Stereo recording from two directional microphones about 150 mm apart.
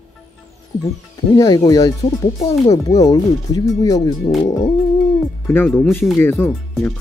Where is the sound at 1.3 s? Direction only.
25° left (ahead or behind).